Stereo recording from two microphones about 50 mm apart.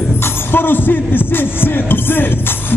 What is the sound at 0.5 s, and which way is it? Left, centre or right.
Music, left.